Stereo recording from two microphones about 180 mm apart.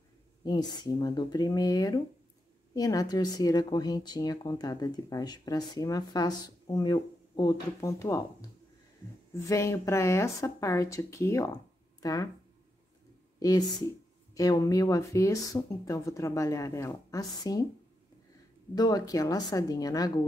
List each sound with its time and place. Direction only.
0.4 s speech: 20° left (ahead or behind)
9.5 s speech: 15° left (ahead or behind)
13.4 s speech: 20° left (ahead or behind)
18.8 s speech: 20° left (ahead or behind)